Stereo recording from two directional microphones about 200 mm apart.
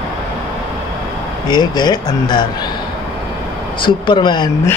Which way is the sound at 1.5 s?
20° left (ahead or behind).